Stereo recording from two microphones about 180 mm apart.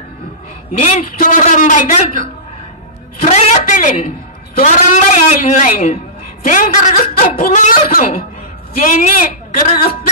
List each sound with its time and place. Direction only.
0.7 s speech: 45° left (ahead or behind)
3.2 s a woman's voice: 40° left (ahead or behind)